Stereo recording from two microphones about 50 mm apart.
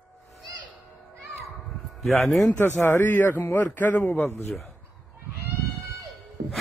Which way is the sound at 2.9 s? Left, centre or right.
Left.